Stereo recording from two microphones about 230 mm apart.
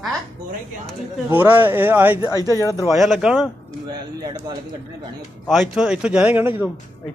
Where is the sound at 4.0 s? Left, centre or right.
Centre.